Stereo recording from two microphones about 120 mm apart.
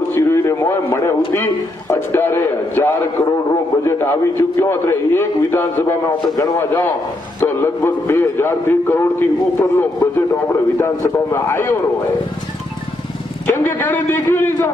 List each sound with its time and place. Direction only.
0.1 s a sound: 20° left (ahead or behind)
1.3 s a man's voice: 20° left (ahead or behind)
13.5 s a man's voice: 15° left (ahead or behind)